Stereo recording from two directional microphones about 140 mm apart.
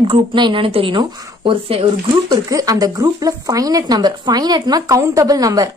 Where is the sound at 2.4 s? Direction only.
25° right (ahead or behind).